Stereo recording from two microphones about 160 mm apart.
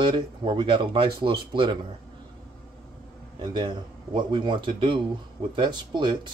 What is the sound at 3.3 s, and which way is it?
Speech, 30° right (ahead or behind).